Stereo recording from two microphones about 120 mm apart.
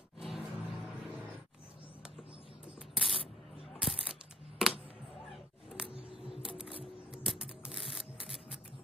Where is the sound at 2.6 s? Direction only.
5° right (ahead or behind).